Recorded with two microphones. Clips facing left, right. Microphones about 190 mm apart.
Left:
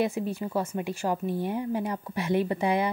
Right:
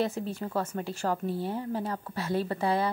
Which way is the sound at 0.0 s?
10° left (ahead or behind).